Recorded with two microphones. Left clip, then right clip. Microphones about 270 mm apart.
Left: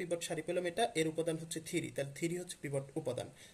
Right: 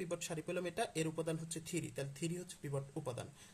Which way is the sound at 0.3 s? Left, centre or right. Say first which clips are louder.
Left 5 dB; centre.